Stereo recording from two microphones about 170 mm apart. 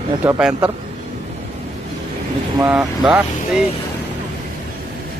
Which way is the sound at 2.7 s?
5° right (ahead or behind).